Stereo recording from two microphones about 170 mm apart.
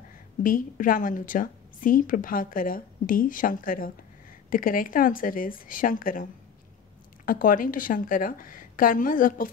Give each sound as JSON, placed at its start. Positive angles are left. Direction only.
{"t": 0.4, "sound": "a woman's voice", "side_deg": 55}
{"t": 7.2, "sound": "a woman's voice", "side_deg": 55}